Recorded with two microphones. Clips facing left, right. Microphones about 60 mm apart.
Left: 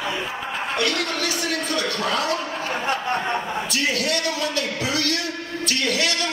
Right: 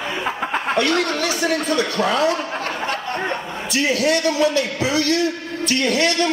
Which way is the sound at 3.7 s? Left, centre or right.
Right.